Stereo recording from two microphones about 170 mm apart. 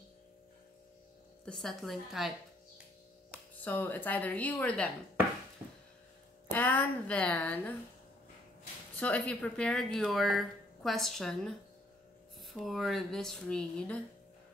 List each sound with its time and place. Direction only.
1.4 s speech: 5° left (ahead or behind)
3.6 s speech: 10° left (ahead or behind)
6.5 s speech: 10° left (ahead or behind)
9.0 s speech: 10° left (ahead or behind)